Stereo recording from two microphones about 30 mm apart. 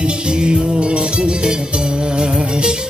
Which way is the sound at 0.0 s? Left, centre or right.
Right.